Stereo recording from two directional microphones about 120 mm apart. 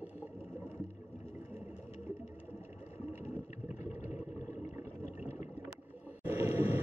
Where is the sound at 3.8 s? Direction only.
70° left (ahead or behind).